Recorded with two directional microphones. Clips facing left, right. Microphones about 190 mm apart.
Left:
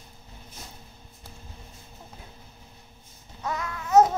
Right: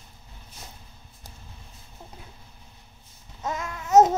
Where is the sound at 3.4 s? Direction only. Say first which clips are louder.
Even; 25° right (ahead or behind).